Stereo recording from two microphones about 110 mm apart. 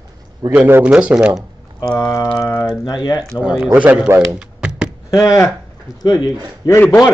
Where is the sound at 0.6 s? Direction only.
20° right (ahead or behind).